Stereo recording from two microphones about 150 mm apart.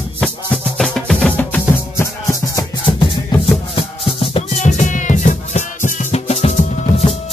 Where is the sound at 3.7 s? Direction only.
40° left (ahead or behind).